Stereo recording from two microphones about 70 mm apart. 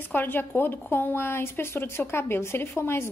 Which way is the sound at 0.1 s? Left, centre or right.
Left.